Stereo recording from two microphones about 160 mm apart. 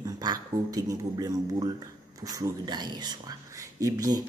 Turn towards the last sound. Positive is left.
turn(degrees=-20)  # may be behind; listen again after turning